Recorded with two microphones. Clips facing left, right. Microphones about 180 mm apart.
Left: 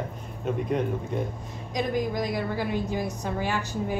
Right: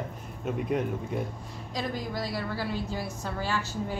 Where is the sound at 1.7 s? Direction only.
15° left (ahead or behind).